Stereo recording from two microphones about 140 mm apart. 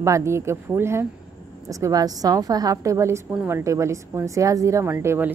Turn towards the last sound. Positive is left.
turn(degrees=-20)  # may be behind; listen again after turning